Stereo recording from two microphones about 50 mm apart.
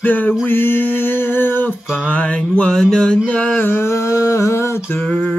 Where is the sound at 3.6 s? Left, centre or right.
Left.